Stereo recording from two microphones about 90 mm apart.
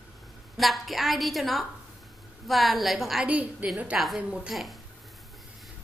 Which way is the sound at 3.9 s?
5° right (ahead or behind).